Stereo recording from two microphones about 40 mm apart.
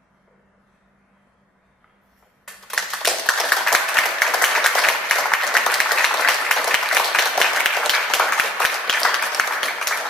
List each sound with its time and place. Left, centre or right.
2.4 s a sound: centre
3.4 s applause: centre
5.1 s applause: centre